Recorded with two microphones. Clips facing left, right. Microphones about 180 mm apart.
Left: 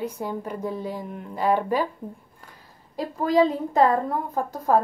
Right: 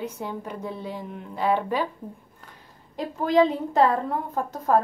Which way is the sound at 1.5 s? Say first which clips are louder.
Left 2 dB; 45° left (ahead or behind).